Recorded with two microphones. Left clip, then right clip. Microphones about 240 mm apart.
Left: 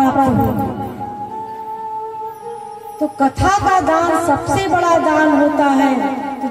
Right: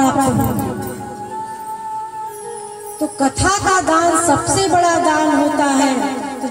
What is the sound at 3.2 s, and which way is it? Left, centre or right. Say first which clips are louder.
Speech: left 2 dB; left.